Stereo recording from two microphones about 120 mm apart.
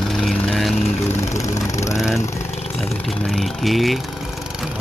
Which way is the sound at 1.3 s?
25° left (ahead or behind).